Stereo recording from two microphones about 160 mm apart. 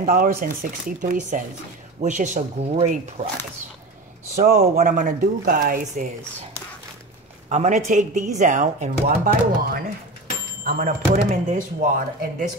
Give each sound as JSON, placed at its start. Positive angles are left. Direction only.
{"t": 0.0, "sound": "speech", "side_deg": -60}
{"t": 4.4, "sound": "speech", "side_deg": -65}
{"t": 7.4, "sound": "speech", "side_deg": -45}
{"t": 9.2, "sound": "speech", "side_deg": -65}